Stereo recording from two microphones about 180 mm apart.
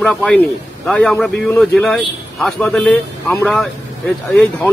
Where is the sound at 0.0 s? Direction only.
5° left (ahead or behind).